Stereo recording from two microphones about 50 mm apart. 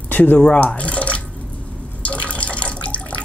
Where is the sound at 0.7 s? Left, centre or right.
Left.